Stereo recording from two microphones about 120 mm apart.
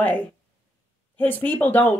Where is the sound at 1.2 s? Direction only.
15° left (ahead or behind).